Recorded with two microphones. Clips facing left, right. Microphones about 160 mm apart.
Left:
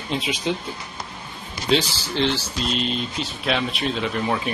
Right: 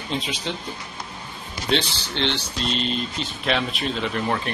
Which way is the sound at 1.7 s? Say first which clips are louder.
Left 3 dB; centre (ahead or behind).